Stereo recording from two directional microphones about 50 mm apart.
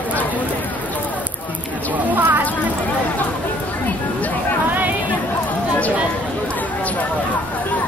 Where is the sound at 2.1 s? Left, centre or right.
Right.